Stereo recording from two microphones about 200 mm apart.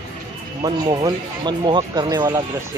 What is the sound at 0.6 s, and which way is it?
Speech, 20° right (ahead or behind).